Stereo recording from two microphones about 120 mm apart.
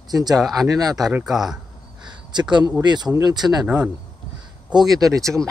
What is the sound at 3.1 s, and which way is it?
Speech, 35° right (ahead or behind).